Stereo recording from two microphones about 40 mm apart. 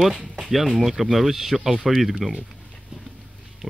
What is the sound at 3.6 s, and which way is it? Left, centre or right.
Music, centre.